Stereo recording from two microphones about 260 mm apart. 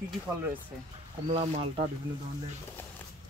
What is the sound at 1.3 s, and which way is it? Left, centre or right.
Speech, right.